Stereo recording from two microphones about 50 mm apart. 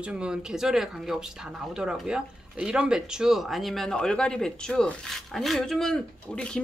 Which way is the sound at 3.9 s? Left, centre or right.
Centre.